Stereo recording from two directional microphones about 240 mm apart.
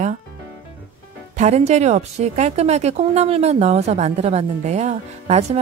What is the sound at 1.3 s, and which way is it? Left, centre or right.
Speech, right.